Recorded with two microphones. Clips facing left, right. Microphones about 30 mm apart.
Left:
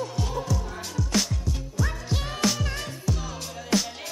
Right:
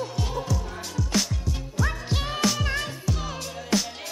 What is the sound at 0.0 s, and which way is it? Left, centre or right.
Music, centre.